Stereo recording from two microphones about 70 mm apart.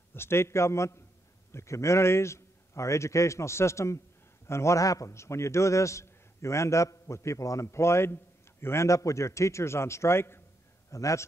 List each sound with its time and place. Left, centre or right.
0.1 s a man's voice: left
10.9 s a man's voice: left